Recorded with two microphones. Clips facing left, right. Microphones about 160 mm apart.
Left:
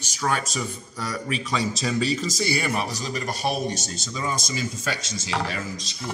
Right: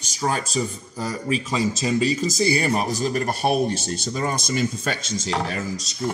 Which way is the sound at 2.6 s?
35° right (ahead or behind).